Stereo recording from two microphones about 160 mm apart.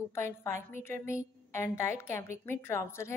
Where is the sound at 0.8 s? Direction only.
15° left (ahead or behind).